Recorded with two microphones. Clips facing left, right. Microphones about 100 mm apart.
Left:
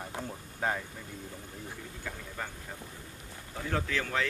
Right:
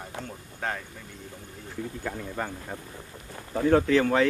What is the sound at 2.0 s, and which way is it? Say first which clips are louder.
Speech: right 6 dB; 55° right (ahead or behind).